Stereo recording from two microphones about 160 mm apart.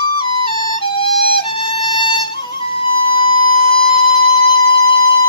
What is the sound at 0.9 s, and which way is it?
Music, 30° left (ahead or behind).